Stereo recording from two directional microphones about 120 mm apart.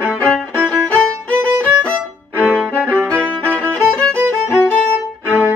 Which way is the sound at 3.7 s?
5° left (ahead or behind).